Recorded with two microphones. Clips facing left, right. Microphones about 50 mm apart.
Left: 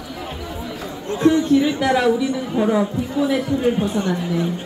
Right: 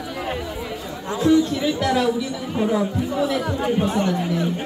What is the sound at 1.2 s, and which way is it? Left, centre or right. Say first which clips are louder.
Speech: even; left.